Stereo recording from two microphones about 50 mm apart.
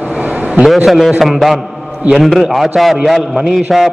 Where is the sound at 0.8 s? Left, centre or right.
Centre.